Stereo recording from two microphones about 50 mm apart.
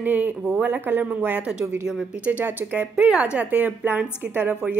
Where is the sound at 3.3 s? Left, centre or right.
Right.